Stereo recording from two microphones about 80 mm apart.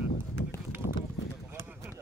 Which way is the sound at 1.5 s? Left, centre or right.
Right.